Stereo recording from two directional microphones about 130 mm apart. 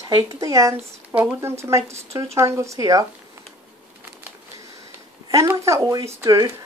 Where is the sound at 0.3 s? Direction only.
25° right (ahead or behind).